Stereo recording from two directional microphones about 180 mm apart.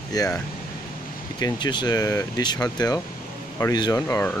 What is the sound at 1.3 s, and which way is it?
Speech, 25° left (ahead or behind).